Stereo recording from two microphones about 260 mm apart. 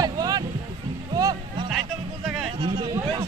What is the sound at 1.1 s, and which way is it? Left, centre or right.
Music, centre.